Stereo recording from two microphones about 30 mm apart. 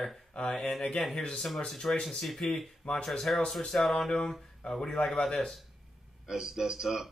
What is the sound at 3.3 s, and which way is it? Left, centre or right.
Speech, left.